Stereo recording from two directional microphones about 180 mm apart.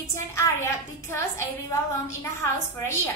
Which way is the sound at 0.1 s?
15° left (ahead or behind).